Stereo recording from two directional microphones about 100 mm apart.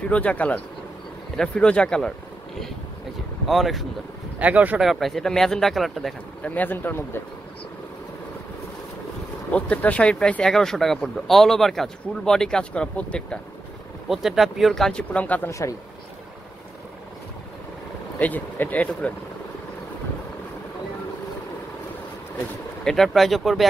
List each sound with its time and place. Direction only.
0.1 s speech: 15° left (ahead or behind)
3.4 s speech: centre (ahead or behind)
4.4 s speech: 15° right (ahead or behind)
4.8 s speech: centre (ahead or behind)
6.4 s speech: 15° left (ahead or behind)
9.5 s speech: 15° left (ahead or behind)
14.0 s speech: 5° right (ahead or behind); by 15.5 s 15° left (ahead or behind)
18.2 s speech: 15° left (ahead or behind)
22.8 s speech: 5° left (ahead or behind)